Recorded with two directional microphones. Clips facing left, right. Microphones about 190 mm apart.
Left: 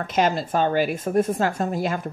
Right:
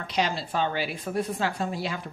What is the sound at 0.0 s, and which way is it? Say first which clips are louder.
Speech: left 6 dB; 50° left (ahead or behind).